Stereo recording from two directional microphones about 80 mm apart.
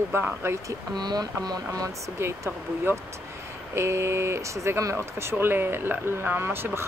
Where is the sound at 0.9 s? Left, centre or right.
Right.